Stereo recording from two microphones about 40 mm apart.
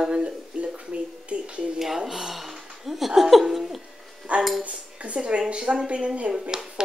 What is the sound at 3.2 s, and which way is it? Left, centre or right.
Laughter, centre.